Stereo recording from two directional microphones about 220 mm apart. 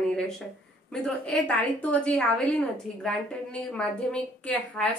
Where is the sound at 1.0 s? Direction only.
5° left (ahead or behind).